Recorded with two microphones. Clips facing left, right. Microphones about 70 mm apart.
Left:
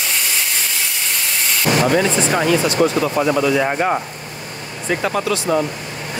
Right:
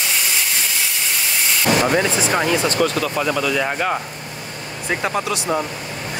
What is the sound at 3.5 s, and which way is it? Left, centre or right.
Speech, left.